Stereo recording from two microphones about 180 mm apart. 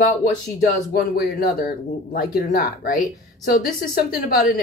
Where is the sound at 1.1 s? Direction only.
55° left (ahead or behind).